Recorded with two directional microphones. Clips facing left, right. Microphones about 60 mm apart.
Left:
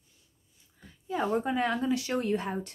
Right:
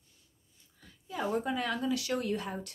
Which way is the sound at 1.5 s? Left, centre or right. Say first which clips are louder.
Left 4 dB; left.